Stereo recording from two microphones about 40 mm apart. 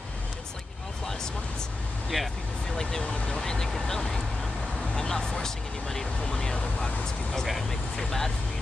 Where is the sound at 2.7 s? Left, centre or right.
Centre.